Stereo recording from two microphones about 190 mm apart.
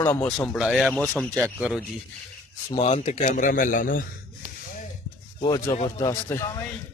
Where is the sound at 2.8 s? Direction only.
35° left (ahead or behind).